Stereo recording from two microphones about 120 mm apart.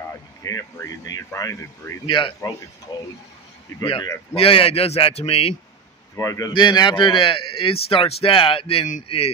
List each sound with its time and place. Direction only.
0.4 s speech: 25° left (ahead or behind)
2.0 s a man's voice: 45° left (ahead or behind)
4.4 s a man's voice: 50° left (ahead or behind)
6.1 s speech: 25° left (ahead or behind)
6.5 s a man's voice: 35° left (ahead or behind); by 9.3 s 55° left (ahead or behind)